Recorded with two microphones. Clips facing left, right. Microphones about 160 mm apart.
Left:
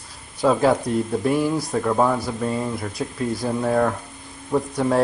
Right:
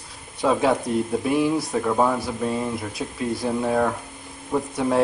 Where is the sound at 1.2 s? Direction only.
Centre (ahead or behind).